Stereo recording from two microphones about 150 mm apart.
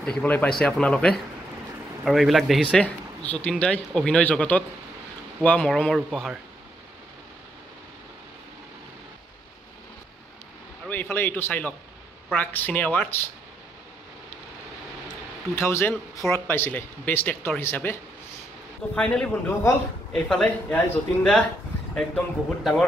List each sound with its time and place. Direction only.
0.0 s speech: 10° left (ahead or behind)
10.9 s speech: 15° left (ahead or behind)
15.5 s speech: 15° left (ahead or behind)
18.9 s speech: 10° left (ahead or behind)